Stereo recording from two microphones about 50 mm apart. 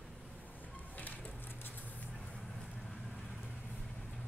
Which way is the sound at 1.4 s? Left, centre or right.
Left.